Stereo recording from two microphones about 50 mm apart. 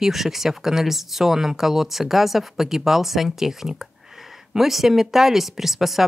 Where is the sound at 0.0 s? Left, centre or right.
Centre.